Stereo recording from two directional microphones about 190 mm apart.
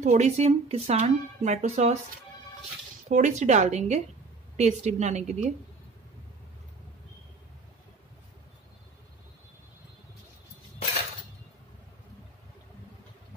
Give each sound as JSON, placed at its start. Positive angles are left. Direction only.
{"t": 0.0, "sound": "speech", "side_deg": -40}
{"t": 3.1, "sound": "speech", "side_deg": -40}